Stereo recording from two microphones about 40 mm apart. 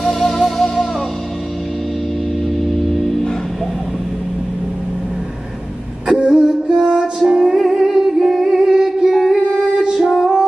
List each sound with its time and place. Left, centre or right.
0.0 s music: centre
2.5 s music: centre
6.0 s a sound: centre
7.2 s music: centre